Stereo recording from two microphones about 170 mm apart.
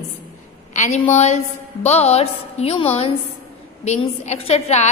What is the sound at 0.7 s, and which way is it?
A woman's voice, 40° left (ahead or behind).